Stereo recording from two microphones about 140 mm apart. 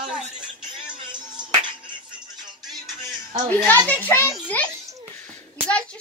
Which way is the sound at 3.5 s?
10° left (ahead or behind).